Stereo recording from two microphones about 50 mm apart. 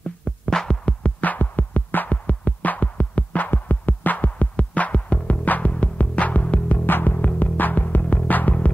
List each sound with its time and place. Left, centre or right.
0.5 s music: centre
1.0 s music: left
6.9 s music: left